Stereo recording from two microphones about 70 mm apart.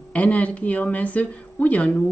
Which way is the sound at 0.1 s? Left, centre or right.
Centre.